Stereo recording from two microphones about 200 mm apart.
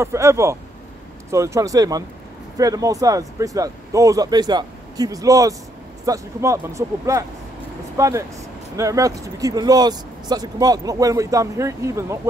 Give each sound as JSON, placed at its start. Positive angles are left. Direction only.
{"t": 0.0, "sound": "speech", "side_deg": -15}